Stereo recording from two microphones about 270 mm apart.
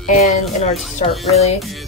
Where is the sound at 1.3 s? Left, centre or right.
Left.